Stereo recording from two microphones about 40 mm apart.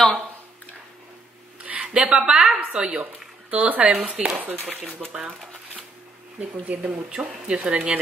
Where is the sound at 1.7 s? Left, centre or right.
Right.